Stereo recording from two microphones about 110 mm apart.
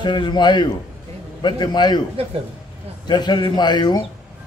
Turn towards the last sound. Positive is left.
turn(degrees=40)  # may be behind; listen again after turning